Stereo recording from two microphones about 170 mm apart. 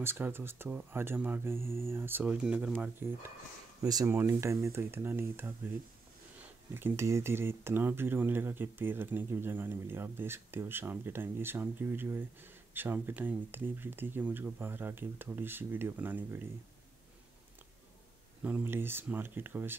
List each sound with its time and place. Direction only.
0.0 s speech: 15° right (ahead or behind)
6.7 s speech: 15° right (ahead or behind)
18.4 s speech: 10° right (ahead or behind)